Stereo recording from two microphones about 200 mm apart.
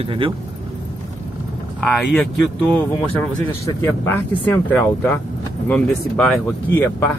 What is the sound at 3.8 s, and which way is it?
A man's voice, 10° left (ahead or behind).